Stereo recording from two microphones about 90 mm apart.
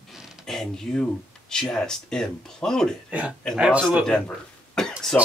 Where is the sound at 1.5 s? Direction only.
5° left (ahead or behind).